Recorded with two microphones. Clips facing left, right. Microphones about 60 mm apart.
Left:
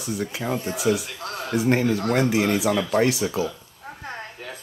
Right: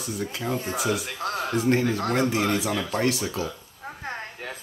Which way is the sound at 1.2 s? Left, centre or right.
Right.